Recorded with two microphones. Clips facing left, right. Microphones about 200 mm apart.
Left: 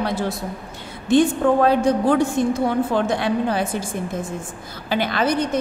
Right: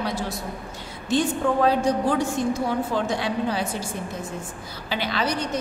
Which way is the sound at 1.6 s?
55° left (ahead or behind).